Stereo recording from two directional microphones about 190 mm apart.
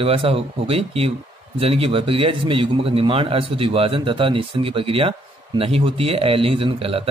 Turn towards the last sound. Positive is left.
turn(degrees=-30)  # may be behind; listen again after turning